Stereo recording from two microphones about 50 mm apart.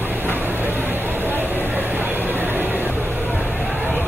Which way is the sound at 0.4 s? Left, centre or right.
Right.